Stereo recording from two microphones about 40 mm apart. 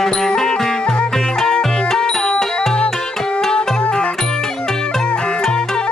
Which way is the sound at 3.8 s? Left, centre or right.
Left.